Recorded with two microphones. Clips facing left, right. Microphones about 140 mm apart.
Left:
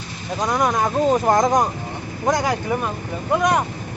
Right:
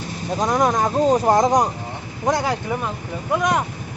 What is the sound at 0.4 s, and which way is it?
Speech, centre (ahead or behind).